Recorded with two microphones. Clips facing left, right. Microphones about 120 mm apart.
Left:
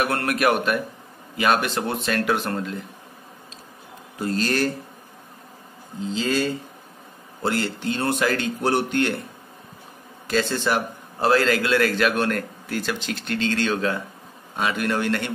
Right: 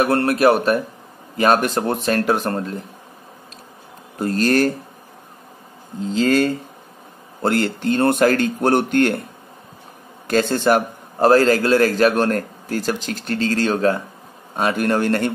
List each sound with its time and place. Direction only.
0.0 s a man's voice: 35° right (ahead or behind)
4.2 s speech: 50° right (ahead or behind)
6.1 s speech: 55° right (ahead or behind)
10.2 s a man's voice: 50° right (ahead or behind)